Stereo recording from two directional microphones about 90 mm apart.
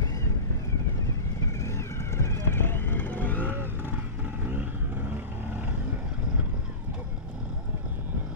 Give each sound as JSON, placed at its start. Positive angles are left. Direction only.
{"t": 1.6, "sound": "vehicle", "side_deg": 30}